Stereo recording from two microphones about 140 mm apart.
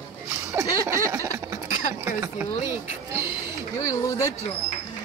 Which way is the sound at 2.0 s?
15° right (ahead or behind).